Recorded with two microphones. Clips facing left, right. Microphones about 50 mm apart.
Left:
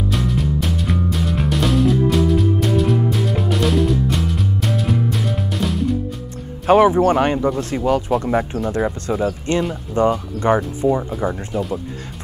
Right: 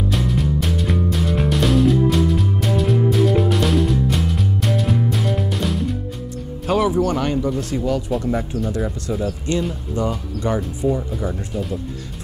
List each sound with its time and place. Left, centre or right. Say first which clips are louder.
0.1 s music: even; centre
6.7 s speech: left 6 dB; left